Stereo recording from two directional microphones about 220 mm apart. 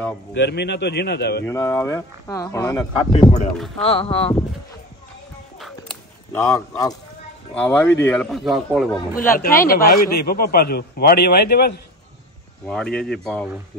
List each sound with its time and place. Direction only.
0.4 s a man's voice: 50° left (ahead or behind)
1.4 s speech: 10° left (ahead or behind)
3.0 s speech: 25° left (ahead or behind)
6.3 s speech: 15° left (ahead or behind)
9.1 s a man's voice: 40° left (ahead or behind)
12.6 s speech: 5° left (ahead or behind)